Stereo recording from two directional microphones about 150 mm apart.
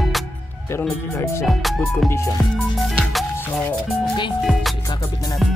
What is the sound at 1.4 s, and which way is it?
Speech, centre (ahead or behind).